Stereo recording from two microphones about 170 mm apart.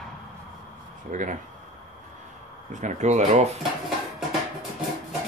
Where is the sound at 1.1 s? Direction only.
50° right (ahead or behind).